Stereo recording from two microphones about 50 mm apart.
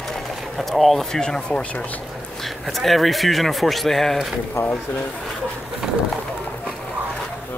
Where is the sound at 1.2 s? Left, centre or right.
Centre.